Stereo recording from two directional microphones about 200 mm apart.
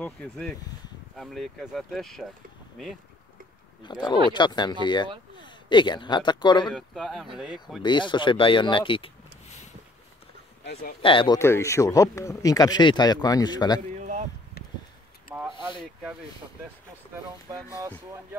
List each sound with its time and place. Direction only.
0.0 s speech: 5° left (ahead or behind)
3.8 s speech: 20° left (ahead or behind)
6.7 s speech: centre (ahead or behind)
7.8 s speech: 25° left (ahead or behind)
10.6 s speech: 55° left (ahead or behind)
11.0 s speech: 25° left (ahead or behind)
11.3 s speech: 15° left (ahead or behind)
13.9 s a sound: 35° right (ahead or behind)
15.3 s a sound: 10° right (ahead or behind)